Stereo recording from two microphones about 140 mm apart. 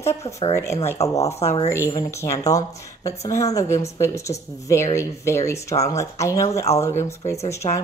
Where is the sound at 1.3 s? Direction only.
50° left (ahead or behind).